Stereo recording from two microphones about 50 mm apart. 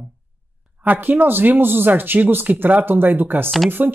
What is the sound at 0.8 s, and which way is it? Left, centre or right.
Speech, right.